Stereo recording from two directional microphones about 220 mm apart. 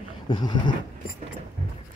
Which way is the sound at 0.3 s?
20° left (ahead or behind).